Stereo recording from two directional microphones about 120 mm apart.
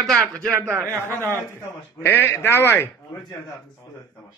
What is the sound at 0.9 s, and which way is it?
Speech, 25° right (ahead or behind).